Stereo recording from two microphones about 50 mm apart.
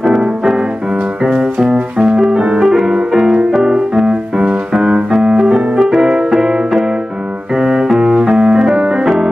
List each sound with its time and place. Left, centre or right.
0.0 s music: centre
7.5 s keyboard: centre
8.0 s piano: centre